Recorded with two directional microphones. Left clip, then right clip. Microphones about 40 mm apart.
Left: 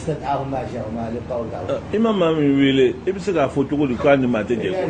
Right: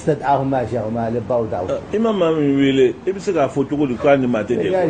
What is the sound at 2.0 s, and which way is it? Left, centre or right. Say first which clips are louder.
A man's voice: right 1 dB; centre.